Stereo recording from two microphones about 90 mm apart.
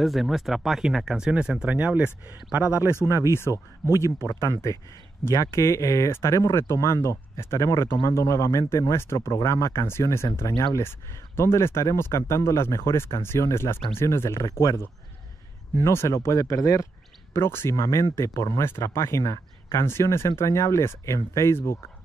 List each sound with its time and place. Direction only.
0.0 s speech: centre (ahead or behind); by 3.3 s 35° right (ahead or behind)
3.3 s speech: 30° left (ahead or behind)